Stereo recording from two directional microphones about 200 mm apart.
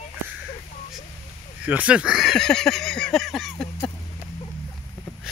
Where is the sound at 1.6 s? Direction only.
5° right (ahead or behind).